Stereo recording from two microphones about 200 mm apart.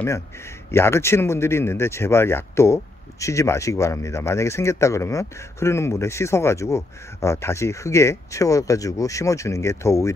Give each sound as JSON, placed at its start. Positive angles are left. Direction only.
{"t": 0.7, "sound": "speech", "side_deg": 10}